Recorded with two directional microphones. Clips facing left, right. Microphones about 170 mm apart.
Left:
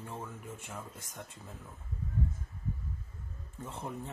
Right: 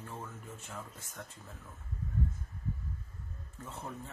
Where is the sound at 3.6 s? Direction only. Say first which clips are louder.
Left 3 dB; 20° left (ahead or behind).